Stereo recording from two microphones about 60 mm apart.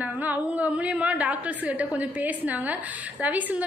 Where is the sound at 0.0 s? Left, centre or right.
Right.